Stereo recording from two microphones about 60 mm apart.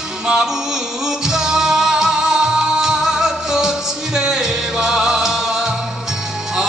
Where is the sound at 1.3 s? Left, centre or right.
Centre.